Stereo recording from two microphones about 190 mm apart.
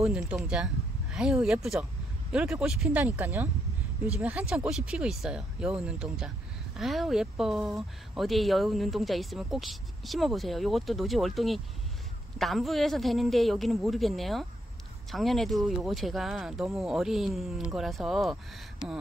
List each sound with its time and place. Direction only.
0.2 s speech: 15° right (ahead or behind)
1.1 s speech: 5° right (ahead or behind)